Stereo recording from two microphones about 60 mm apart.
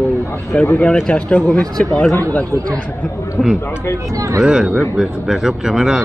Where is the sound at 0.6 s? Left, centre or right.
Left; by 1.9 s centre.